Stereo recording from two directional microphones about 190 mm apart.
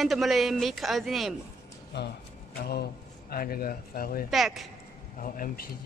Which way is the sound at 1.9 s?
60° left (ahead or behind).